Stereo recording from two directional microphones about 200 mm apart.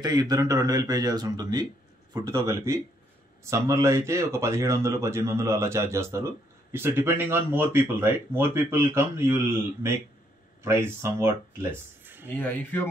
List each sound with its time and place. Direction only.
0.0 s speech: 20° right (ahead or behind)
12.3 s speech: 10° left (ahead or behind)